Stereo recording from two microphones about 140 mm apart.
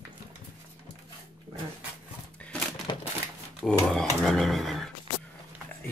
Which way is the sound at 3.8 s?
5° left (ahead or behind).